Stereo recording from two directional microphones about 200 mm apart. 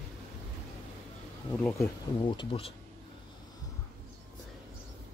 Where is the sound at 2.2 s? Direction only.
25° left (ahead or behind).